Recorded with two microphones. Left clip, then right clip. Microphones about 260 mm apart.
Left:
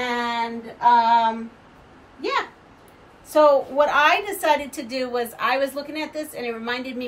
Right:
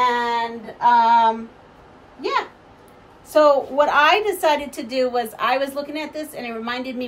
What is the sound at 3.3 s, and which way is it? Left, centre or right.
A woman's voice, centre.